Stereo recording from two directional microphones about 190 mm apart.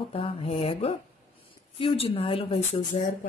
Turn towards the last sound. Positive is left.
turn(degrees=35)  # may be behind; listen again after turning